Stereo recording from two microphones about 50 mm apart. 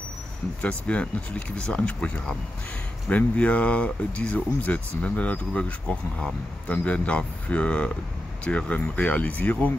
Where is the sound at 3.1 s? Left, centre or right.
Left.